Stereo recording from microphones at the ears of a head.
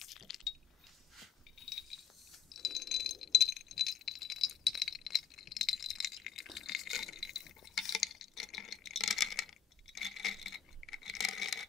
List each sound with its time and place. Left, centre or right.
0.0 s a sound: left
1.6 s mechanisms: left
2.5 s rattle: left